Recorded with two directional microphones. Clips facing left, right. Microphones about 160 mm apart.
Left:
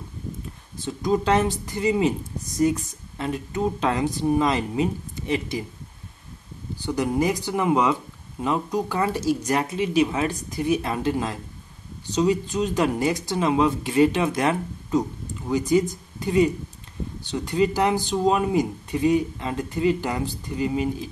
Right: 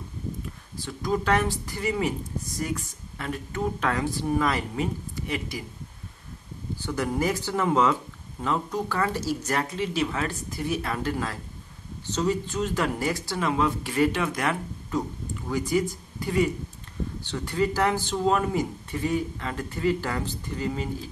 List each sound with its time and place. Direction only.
0.7 s speech: 20° left (ahead or behind)
6.8 s speech: 15° left (ahead or behind)